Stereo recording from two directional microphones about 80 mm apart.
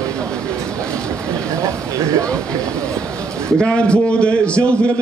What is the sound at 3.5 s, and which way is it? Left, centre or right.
A man's voice, centre.